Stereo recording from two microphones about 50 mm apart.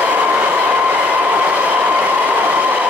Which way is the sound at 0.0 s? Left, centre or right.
Right.